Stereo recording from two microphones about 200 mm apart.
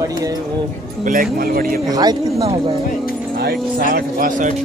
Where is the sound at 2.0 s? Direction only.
30° right (ahead or behind).